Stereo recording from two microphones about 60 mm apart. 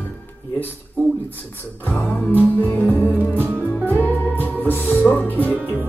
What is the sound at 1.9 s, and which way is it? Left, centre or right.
Music, left.